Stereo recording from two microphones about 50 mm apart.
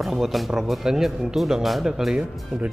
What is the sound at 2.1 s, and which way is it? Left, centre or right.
Speech, right.